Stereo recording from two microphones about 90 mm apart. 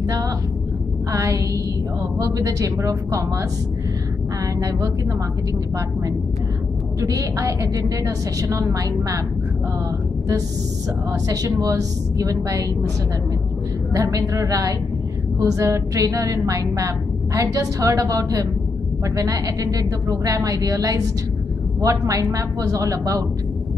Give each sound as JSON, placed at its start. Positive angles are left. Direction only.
{"t": 1.1, "sound": "a woman's voice", "side_deg": -35}
{"t": 4.6, "sound": "a woman's voice", "side_deg": -35}
{"t": 7.0, "sound": "a woman's voice", "side_deg": -40}
{"t": 11.1, "sound": "a woman's voice", "side_deg": -40}
{"t": 13.9, "sound": "a woman's voice", "side_deg": -35}